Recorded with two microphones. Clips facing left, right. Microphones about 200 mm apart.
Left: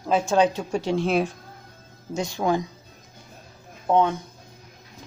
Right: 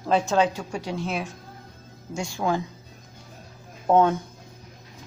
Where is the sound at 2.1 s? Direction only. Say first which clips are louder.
Left 2 dB; 20° left (ahead or behind).